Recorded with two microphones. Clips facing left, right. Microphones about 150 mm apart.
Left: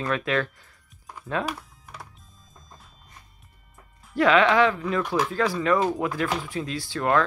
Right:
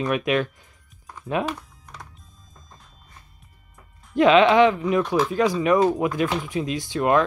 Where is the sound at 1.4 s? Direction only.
5° left (ahead or behind).